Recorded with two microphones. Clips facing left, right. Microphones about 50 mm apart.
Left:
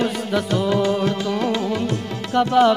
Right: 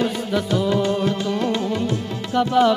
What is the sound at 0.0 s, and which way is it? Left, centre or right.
Music, left.